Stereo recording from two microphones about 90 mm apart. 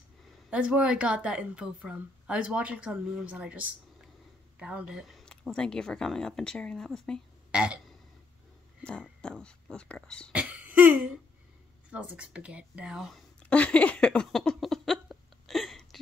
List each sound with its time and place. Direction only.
0.5 s a woman's voice: 10° right (ahead or behind)
5.2 s speech: 10° left (ahead or behind)
7.5 s a woman's voice: 10° right (ahead or behind)
9.2 s speech: 10° left (ahead or behind)
10.3 s a sound: 15° right (ahead or behind)
11.9 s a woman's voice: 15° right (ahead or behind)
13.4 s a sound: 15° left (ahead or behind)